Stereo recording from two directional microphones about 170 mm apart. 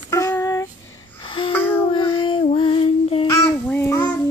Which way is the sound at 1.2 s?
30° left (ahead or behind).